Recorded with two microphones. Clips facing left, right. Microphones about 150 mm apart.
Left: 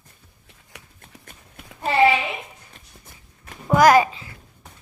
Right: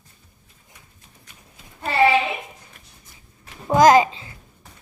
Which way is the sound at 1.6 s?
60° left (ahead or behind).